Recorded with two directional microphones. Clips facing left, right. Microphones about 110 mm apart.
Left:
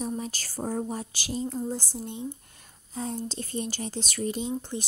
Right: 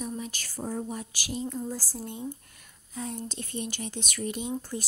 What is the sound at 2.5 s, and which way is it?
Speech, 30° left (ahead or behind).